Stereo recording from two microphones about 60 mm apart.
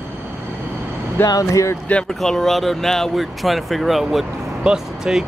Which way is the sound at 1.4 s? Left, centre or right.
Left.